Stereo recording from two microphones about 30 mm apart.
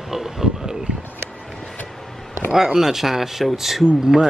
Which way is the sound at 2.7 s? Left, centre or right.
Centre.